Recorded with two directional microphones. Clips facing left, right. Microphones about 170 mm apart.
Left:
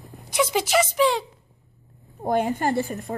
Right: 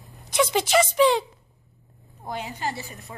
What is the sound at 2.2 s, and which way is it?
Speech, 50° left (ahead or behind).